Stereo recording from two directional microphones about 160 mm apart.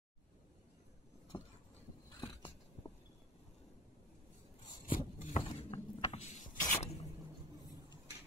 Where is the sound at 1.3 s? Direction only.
25° left (ahead or behind).